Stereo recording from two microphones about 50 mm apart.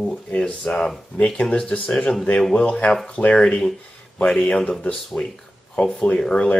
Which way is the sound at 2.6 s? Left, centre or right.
Left.